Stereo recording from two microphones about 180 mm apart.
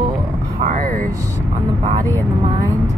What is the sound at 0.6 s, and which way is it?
Speech, 45° right (ahead or behind).